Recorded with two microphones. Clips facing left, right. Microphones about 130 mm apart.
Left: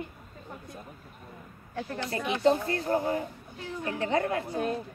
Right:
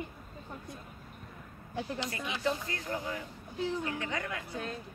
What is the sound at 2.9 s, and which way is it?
A woman's voice, 40° left (ahead or behind).